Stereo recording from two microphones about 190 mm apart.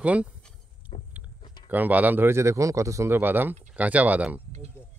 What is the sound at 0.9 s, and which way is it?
Vehicle, 25° left (ahead or behind).